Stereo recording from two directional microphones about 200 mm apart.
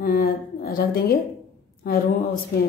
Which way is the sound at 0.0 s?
45° left (ahead or behind).